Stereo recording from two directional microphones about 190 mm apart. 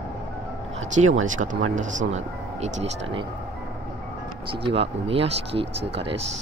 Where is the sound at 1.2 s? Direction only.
40° right (ahead or behind).